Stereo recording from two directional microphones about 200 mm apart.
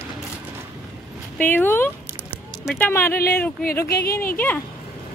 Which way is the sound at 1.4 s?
10° left (ahead or behind).